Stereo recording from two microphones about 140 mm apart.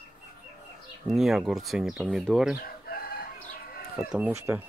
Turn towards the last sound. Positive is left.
turn(degrees=-20)  # may be behind; listen again after turning